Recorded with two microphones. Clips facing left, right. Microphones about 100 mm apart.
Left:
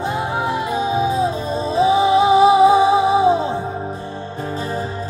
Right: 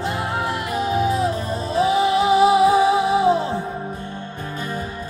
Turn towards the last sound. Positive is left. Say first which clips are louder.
# left 3 dB
turn(degrees=20)  # may be behind; listen again after turning